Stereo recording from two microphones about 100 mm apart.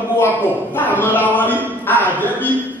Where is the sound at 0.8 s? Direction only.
20° left (ahead or behind).